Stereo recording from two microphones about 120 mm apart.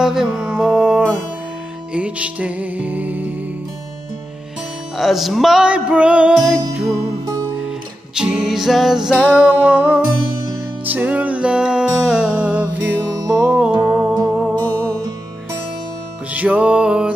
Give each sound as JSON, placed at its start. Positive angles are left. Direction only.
{"t": 0.0, "sound": "music", "side_deg": -5}
{"t": 4.9, "sound": "music", "side_deg": 0}
{"t": 8.1, "sound": "music", "side_deg": -5}
{"t": 13.0, "sound": "music", "side_deg": -30}
{"t": 13.5, "sound": "music", "side_deg": -10}
{"t": 16.3, "sound": "music", "side_deg": -10}